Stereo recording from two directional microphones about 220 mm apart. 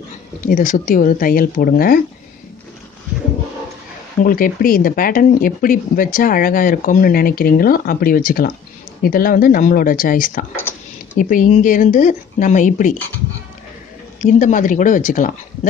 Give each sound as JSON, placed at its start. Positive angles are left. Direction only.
{"t": 0.5, "sound": "speech", "side_deg": 40}
{"t": 4.2, "sound": "speech", "side_deg": 40}
{"t": 14.2, "sound": "speech", "side_deg": 35}